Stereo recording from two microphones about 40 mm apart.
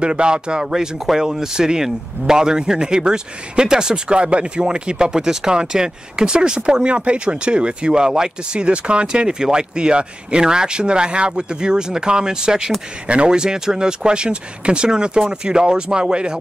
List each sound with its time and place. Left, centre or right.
0.0 s speech: right